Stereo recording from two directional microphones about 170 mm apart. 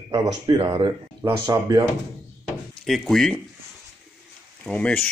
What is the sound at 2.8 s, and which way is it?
Speech, centre (ahead or behind).